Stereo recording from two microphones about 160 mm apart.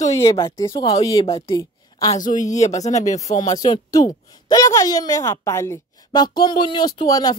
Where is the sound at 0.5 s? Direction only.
20° left (ahead or behind).